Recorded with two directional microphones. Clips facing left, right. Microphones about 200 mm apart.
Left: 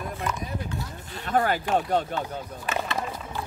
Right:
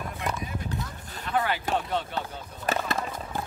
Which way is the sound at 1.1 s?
45° left (ahead or behind).